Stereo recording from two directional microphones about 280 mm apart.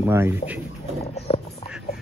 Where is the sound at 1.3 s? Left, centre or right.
Centre.